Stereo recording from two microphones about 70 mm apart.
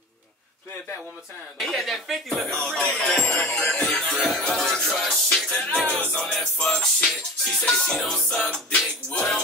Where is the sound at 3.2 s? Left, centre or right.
Left.